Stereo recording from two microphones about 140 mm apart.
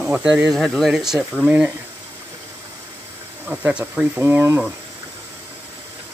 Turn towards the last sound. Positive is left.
turn(degrees=-15)  # may be behind; listen again after turning